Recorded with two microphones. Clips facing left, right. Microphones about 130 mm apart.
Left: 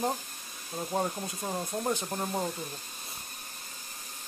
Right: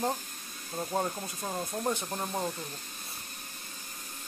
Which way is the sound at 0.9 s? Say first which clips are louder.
Left 2 dB; 5° left (ahead or behind).